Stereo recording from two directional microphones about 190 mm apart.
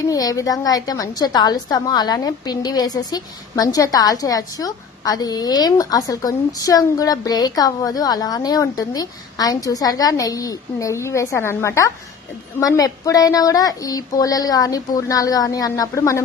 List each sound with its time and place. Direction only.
0.0 s a woman's voice: 20° left (ahead or behind)